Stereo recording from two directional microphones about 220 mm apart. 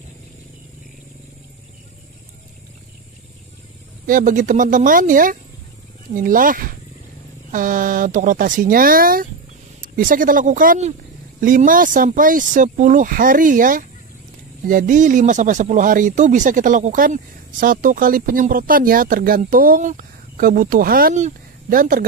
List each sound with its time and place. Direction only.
4.0 s speech: 40° right (ahead or behind)